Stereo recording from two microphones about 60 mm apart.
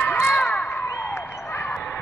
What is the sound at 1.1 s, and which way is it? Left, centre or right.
Basketball bounce, left.